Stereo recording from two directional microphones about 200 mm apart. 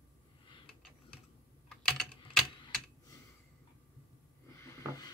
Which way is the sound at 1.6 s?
5° left (ahead or behind).